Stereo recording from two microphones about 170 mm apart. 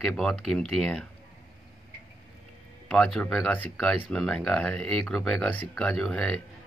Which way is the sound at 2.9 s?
5° left (ahead or behind).